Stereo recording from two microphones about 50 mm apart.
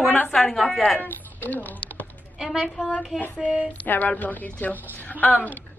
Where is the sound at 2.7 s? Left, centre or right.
Left.